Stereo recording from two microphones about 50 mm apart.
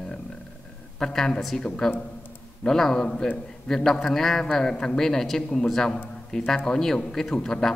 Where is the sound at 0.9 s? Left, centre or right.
Centre.